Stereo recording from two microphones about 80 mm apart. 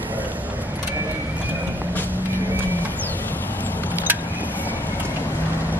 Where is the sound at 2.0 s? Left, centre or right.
Right.